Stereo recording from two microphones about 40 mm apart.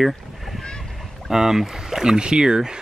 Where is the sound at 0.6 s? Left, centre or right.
Centre.